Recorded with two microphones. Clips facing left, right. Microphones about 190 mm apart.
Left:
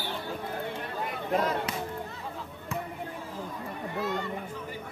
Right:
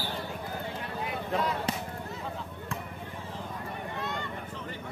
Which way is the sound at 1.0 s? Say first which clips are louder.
Left 2 dB; 45° left (ahead or behind).